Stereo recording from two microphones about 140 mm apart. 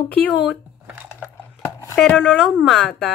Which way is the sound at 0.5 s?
10° right (ahead or behind).